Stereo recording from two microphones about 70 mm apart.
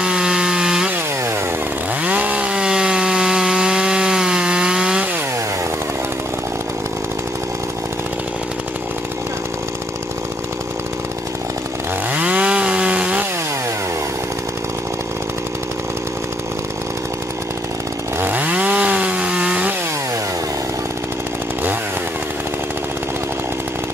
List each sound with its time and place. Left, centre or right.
0.0 s wood: centre
2.0 s wood: right
12.1 s chainsaw: centre
18.2 s chainsaw: right